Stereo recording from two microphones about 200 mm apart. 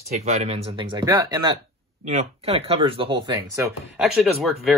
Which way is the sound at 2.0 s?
30° right (ahead or behind).